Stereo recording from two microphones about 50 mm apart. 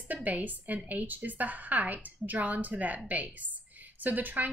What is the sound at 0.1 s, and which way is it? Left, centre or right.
A woman's voice, right.